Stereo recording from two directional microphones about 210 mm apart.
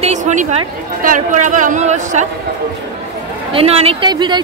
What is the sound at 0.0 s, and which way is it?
A woman's voice, 35° right (ahead or behind).